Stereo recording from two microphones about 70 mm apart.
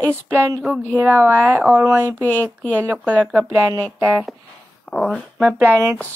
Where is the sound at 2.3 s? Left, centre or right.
Left.